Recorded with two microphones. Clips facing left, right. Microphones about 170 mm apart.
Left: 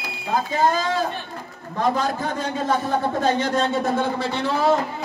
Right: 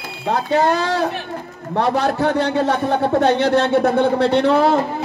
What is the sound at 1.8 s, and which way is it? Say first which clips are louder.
A man's voice: right 5 dB; 70° right (ahead or behind).